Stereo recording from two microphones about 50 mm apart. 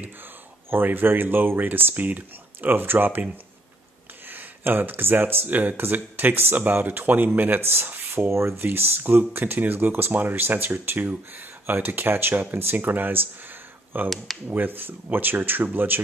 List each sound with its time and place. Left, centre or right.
0.7 s speech: right
4.3 s speech: right
8.3 s speech: right
8.7 s speech: right
14.0 s speech: centre
14.5 s speech: right